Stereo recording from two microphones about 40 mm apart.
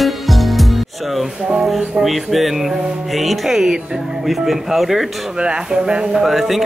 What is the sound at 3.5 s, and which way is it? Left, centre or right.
Speech, centre.